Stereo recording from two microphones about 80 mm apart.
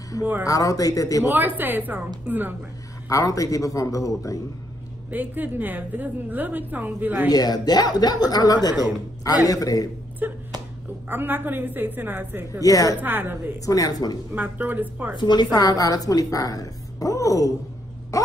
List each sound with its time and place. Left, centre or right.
0.2 s a woman's voice: right
0.5 s a woman's voice: left
1.3 s a woman's voice: right
3.1 s a woman's voice: left
5.1 s a woman's voice: right
7.2 s a woman's voice: left
10.2 s a woman's voice: right
12.6 s a woman's voice: left
13.0 s a woman's voice: right
13.7 s a woman's voice: left
14.3 s a woman's voice: right
15.1 s a woman's voice: left